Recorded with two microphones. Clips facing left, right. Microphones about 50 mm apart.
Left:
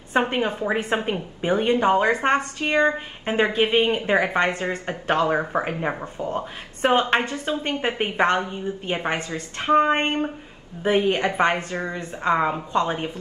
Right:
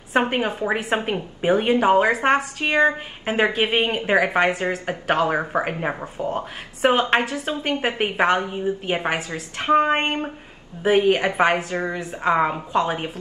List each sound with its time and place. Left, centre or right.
0.1 s a woman's voice: centre
9.3 s a woman's voice: right
9.8 s a woman's voice: centre